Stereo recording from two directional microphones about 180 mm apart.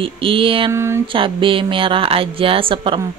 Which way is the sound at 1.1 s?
30° right (ahead or behind).